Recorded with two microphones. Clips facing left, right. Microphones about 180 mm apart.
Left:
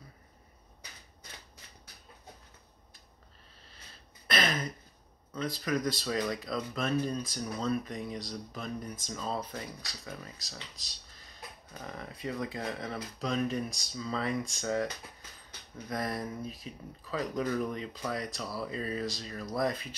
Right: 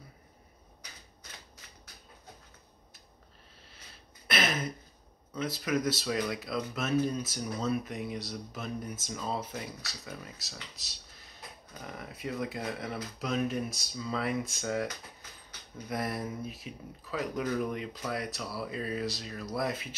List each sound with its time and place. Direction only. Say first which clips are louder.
4.3 s a sound: even; 5° right (ahead or behind)
5.3 s speech: right 1 dB; 5° right (ahead or behind)
15.9 s speech: right 1 dB; 5° right (ahead or behind)